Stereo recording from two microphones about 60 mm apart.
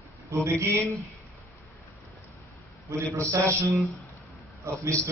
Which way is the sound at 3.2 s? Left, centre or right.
Right.